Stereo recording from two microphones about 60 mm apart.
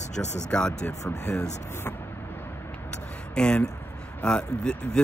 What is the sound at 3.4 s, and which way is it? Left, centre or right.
Speech, centre.